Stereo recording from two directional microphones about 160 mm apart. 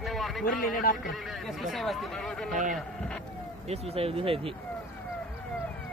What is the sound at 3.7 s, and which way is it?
Speech, 40° right (ahead or behind).